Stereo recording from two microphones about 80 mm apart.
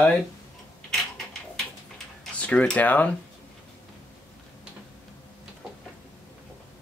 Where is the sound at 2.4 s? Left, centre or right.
Centre.